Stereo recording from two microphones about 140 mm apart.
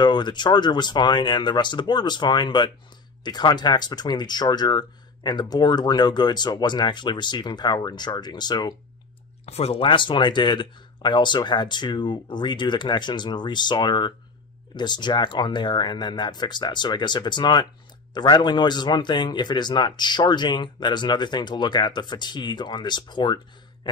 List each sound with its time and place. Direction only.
0.0 s a man's voice: 30° left (ahead or behind)
9.5 s a man's voice: 45° left (ahead or behind)